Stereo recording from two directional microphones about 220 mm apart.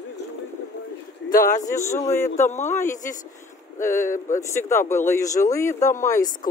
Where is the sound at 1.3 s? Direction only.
40° left (ahead or behind).